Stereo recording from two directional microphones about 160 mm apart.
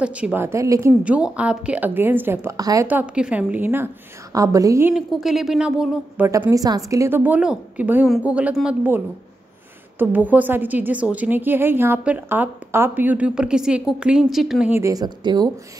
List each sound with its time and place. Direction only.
0.0 s a woman's voice: 10° right (ahead or behind)
1.0 s a woman's voice: 10° right (ahead or behind)
2.9 s a woman's voice: 10° right (ahead or behind)
4.9 s speech: centre (ahead or behind)
6.5 s a woman's voice: 20° right (ahead or behind); by 14.7 s centre (ahead or behind)
14.7 s a woman's voice: 20° right (ahead or behind)